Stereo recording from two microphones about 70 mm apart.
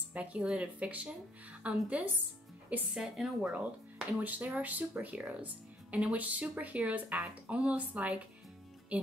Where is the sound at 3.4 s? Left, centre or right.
Centre.